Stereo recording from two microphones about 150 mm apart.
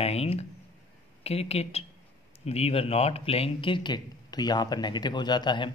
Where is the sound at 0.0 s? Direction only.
45° left (ahead or behind).